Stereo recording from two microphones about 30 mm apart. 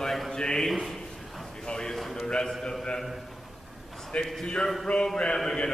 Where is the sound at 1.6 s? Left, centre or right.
Left.